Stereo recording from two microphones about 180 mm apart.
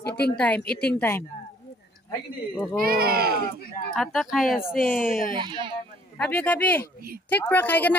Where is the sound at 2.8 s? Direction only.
60° right (ahead or behind).